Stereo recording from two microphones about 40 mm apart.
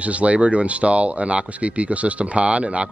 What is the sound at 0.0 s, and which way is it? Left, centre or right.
Speech, right.